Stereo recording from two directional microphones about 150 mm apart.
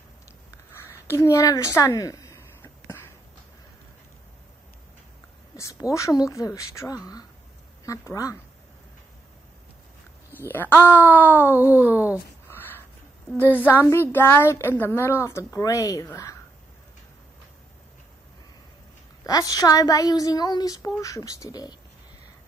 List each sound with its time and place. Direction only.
0.7 s a sound: 15° left (ahead or behind)
5.6 s a woman's voice: 20° left (ahead or behind)
10.3 s a woman's voice: 15° left (ahead or behind)
11.5 s speech: 15° right (ahead or behind)
12.4 s a sound: 15° left (ahead or behind)
13.5 s a woman's voice: 10° left (ahead or behind)
19.2 s a woman's voice: 25° left (ahead or behind)